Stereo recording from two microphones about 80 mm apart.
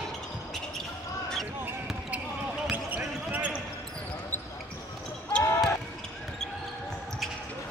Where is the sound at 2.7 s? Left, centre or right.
Centre.